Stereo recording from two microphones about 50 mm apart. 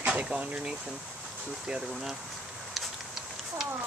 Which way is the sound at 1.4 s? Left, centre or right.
Centre.